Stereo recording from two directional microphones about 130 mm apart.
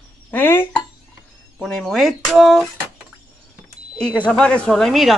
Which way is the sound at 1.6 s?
5° left (ahead or behind).